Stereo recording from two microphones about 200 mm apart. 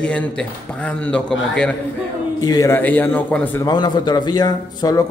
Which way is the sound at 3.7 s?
20° left (ahead or behind).